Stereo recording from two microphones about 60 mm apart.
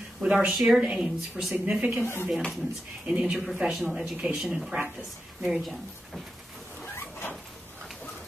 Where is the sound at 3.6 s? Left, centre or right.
Centre.